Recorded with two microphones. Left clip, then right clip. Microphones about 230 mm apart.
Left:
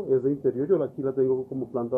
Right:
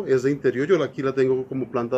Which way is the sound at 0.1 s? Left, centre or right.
Right.